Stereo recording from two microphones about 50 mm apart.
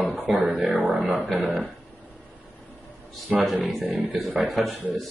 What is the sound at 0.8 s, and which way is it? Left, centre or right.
Speech, right.